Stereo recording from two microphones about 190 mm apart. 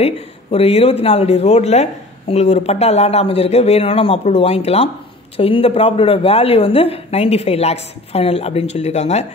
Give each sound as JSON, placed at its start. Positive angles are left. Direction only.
{"t": 0.0, "sound": "speech", "side_deg": 30}